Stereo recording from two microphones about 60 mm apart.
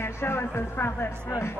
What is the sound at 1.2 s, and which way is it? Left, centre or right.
Speech, left.